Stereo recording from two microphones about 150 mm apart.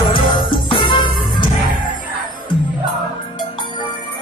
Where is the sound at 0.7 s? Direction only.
30° left (ahead or behind).